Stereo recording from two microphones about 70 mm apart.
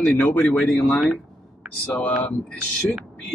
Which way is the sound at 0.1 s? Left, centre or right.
Left.